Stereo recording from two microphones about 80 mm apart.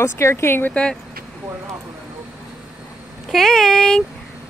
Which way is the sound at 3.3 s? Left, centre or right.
Centre.